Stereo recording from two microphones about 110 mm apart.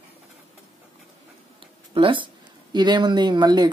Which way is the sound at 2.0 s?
50° right (ahead or behind).